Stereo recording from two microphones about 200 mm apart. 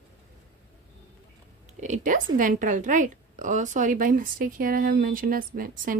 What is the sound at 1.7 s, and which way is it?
A woman's voice, 35° right (ahead or behind).